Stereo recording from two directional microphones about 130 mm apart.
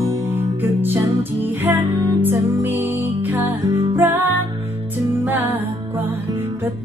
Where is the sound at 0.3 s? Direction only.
15° right (ahead or behind).